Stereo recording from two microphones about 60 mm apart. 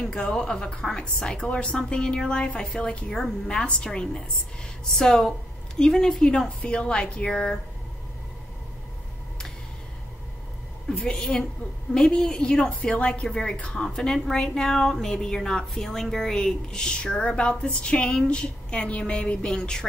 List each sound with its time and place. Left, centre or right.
0.0 s a woman's voice: centre
11.0 s a woman's voice: centre